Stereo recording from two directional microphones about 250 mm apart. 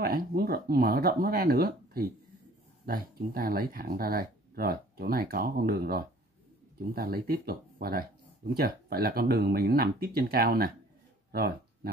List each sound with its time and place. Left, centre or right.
0.0 s speech: right